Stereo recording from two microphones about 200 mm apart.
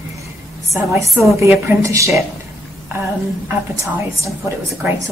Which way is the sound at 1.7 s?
15° right (ahead or behind).